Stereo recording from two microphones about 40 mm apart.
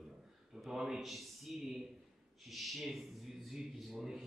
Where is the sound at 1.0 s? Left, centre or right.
Centre.